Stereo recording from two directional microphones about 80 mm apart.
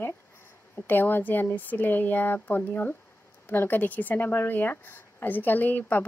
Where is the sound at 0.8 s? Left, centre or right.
Left.